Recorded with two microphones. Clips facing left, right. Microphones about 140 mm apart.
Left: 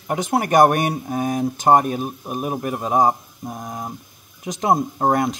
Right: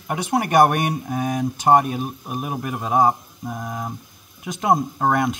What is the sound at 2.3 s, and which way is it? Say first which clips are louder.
Speech: left 3 dB; 25° left (ahead or behind).